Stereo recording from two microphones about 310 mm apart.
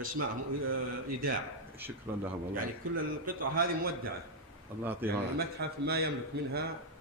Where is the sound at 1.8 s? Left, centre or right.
Centre.